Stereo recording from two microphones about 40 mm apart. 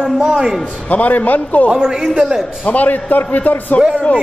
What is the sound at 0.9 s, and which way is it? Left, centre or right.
Speech, left.